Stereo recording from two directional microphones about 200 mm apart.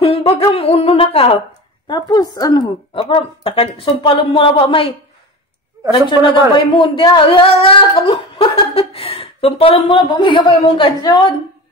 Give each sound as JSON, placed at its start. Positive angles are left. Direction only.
{"t": 0.0, "sound": "humming", "side_deg": 30}
{"t": 1.9, "sound": "a woman's voice", "side_deg": 20}
{"t": 5.9, "sound": "a woman's voice", "side_deg": 25}